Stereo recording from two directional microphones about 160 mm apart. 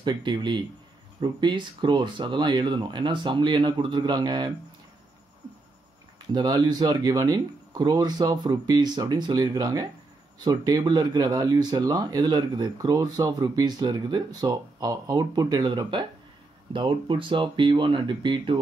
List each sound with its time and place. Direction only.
0.0 s speech: 30° right (ahead or behind)
6.3 s speech: 25° right (ahead or behind)